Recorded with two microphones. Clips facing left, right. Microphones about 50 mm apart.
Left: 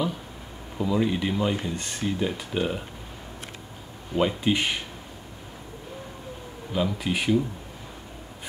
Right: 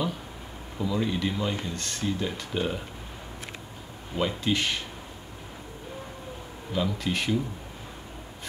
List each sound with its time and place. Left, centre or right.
0.7 s speech: centre
4.1 s speech: centre
6.7 s speech: centre